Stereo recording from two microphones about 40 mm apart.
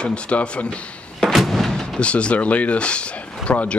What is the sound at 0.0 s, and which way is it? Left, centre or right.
Speech, left.